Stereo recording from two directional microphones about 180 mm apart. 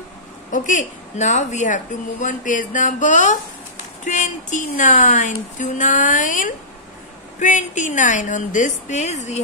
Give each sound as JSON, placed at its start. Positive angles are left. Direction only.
{"t": 0.5, "sound": "speech", "side_deg": 45}